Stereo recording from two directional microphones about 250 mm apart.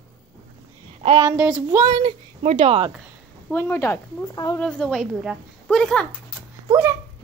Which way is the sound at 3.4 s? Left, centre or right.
Centre.